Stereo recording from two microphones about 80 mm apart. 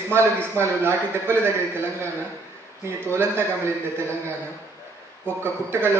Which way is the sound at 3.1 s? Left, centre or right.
Right.